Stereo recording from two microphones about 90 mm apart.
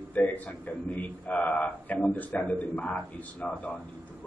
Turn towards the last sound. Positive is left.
turn(degrees=15)  # may be behind; listen again after turning